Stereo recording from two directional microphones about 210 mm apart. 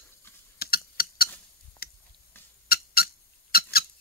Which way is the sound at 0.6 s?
45° left (ahead or behind).